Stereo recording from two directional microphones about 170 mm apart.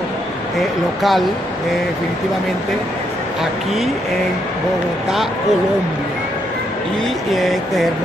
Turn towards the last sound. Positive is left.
turn(degrees=0)  # may be behind; listen again after turning